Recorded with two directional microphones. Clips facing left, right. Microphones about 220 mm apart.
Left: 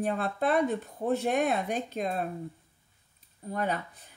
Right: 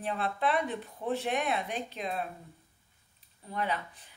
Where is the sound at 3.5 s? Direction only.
45° left (ahead or behind).